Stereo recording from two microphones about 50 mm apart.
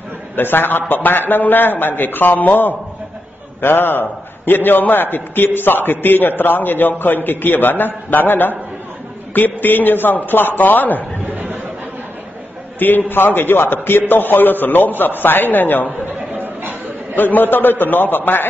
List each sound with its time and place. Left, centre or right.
0.4 s a man's voice: left
12.7 s a man's voice: left
17.1 s a man's voice: left